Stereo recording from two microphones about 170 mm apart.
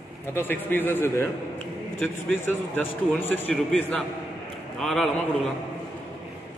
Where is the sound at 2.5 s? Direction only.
10° left (ahead or behind).